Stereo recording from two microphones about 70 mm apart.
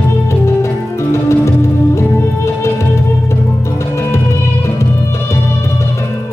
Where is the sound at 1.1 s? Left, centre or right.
Left.